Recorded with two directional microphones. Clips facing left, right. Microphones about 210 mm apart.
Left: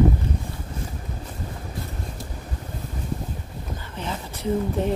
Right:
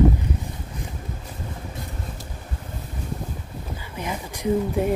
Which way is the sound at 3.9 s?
10° right (ahead or behind).